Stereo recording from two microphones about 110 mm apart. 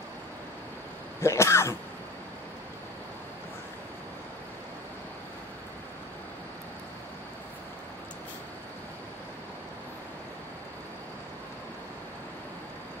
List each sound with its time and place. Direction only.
1.2 s throat clearing: 25° left (ahead or behind)